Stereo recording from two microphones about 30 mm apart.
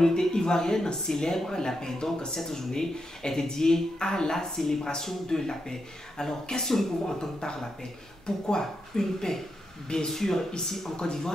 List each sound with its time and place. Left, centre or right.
0.1 s speech: left
6.7 s speech: centre
7.2 s speech: left
8.3 s speech: centre